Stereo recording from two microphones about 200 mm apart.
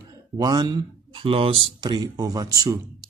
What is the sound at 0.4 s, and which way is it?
Speech, 20° right (ahead or behind).